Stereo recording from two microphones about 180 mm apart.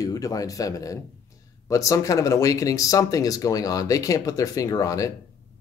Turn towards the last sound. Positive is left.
turn(degrees=20)  # may be behind; listen again after turning